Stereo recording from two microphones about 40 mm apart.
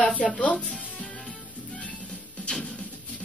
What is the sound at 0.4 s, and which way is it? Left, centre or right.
Speech, left.